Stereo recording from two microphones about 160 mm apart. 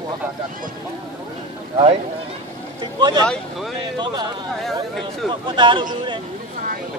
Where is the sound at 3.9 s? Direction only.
25° right (ahead or behind).